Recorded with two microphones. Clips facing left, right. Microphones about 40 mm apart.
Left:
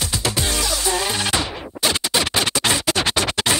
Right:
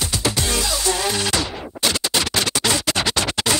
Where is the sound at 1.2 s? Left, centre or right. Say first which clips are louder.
Even; left.